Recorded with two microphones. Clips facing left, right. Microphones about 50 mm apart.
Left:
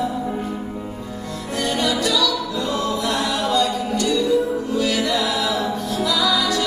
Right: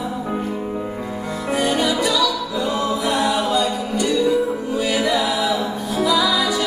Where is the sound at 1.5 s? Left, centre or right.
Centre.